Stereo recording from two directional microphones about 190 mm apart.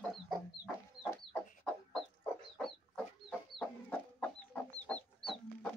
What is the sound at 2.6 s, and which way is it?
Chicken, 5° left (ahead or behind).